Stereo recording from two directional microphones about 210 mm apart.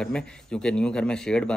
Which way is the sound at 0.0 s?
5° left (ahead or behind).